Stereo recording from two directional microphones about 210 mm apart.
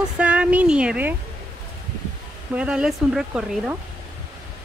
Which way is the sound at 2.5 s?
5° right (ahead or behind).